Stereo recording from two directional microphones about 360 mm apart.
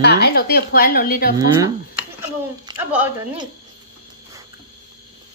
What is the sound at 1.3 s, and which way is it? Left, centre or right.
Speech, centre.